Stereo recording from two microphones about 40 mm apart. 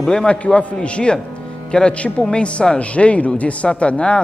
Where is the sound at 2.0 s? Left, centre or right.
Left.